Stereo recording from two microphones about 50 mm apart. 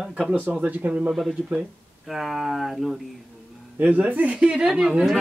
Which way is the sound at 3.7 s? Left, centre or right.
Right.